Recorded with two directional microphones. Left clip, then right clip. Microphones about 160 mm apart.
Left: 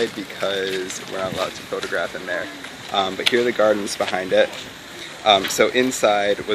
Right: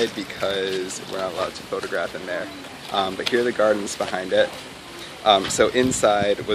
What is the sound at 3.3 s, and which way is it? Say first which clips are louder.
Speech: left 1 dB; 25° left (ahead or behind).